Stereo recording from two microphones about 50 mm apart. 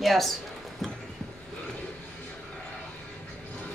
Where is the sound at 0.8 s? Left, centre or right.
Centre.